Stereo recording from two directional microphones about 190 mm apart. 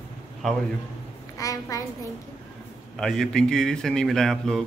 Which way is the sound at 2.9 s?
Centre (ahead or behind).